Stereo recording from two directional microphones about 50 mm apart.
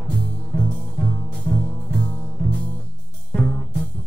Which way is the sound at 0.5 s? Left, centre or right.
Centre.